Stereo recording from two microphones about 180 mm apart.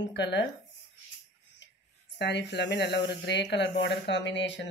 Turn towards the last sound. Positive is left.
turn(degrees=80)